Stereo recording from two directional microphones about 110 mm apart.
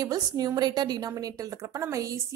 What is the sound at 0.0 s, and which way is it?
A woman's voice, 35° right (ahead or behind).